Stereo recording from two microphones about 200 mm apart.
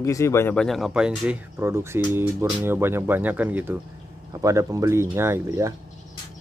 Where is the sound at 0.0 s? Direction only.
15° left (ahead or behind); by 5.8 s 15° right (ahead or behind).